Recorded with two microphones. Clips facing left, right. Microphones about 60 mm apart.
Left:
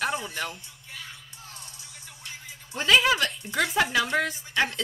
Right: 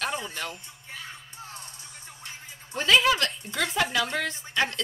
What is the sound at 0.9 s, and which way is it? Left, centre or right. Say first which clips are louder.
Music: right 2 dB; right.